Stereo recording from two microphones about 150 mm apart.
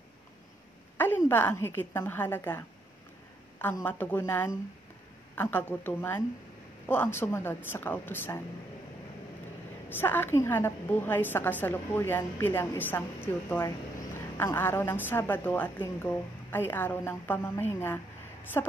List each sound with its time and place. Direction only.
0.9 s a woman's voice: 15° left (ahead or behind)
3.7 s a woman's voice: 15° left (ahead or behind)
9.8 s a woman's voice: 15° left (ahead or behind)